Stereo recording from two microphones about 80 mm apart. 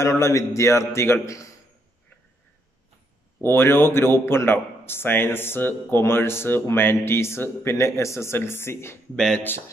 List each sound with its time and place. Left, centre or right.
0.0 s a man's voice: left
3.3 s a man's voice: left
9.1 s speech: centre